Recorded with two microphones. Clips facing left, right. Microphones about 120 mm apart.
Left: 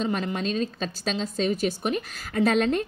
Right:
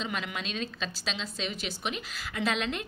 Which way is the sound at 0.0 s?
40° left (ahead or behind).